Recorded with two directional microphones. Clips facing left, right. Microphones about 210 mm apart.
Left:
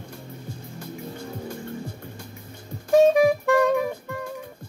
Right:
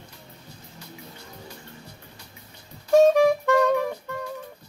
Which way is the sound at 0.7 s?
50° left (ahead or behind).